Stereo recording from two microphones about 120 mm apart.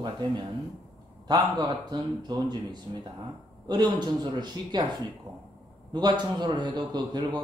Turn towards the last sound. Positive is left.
turn(degrees=-35)  # may be behind; listen again after turning